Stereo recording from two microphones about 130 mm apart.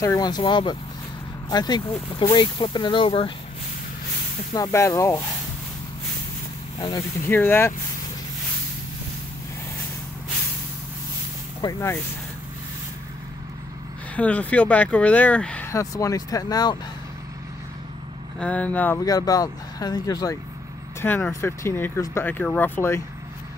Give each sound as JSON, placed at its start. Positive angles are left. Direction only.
{"t": 0.0, "sound": "speech", "side_deg": 30}
{"t": 4.6, "sound": "speech", "side_deg": 25}
{"t": 7.0, "sound": "speech", "side_deg": 20}
{"t": 11.6, "sound": "speech", "side_deg": 35}
{"t": 14.1, "sound": "speech", "side_deg": 10}
{"t": 15.7, "sound": "speech", "side_deg": 25}
{"t": 18.4, "sound": "speech", "side_deg": 10}
{"t": 19.0, "sound": "speech", "side_deg": 30}
{"t": 21.0, "sound": "speech", "side_deg": 15}